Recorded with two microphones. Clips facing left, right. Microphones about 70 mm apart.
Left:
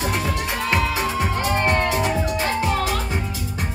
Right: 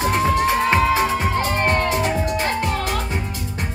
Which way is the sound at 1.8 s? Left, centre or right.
Left.